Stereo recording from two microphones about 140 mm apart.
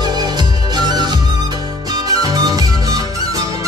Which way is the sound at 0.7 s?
30° right (ahead or behind).